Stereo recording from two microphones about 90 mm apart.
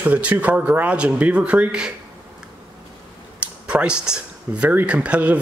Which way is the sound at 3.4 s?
10° right (ahead or behind).